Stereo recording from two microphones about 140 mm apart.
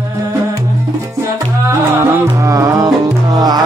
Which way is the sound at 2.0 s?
20° right (ahead or behind).